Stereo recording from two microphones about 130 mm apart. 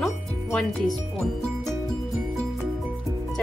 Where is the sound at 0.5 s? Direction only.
Centre (ahead or behind).